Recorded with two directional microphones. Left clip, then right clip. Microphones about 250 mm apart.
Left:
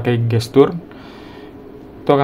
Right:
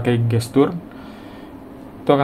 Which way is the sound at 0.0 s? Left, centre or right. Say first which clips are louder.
Left 1 dB; centre.